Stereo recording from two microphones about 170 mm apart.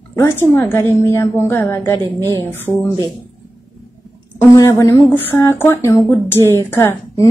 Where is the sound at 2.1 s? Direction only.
20° right (ahead or behind).